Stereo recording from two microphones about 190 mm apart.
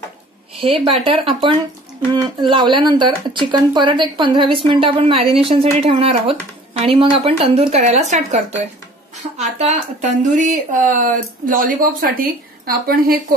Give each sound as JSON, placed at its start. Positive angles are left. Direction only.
{"t": 0.6, "sound": "a woman's voice", "side_deg": -30}